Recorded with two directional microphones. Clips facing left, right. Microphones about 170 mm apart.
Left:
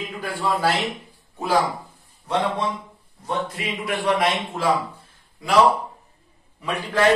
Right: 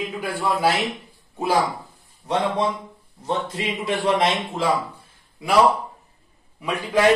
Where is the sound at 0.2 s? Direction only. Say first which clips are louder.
Right 1 dB; 15° right (ahead or behind).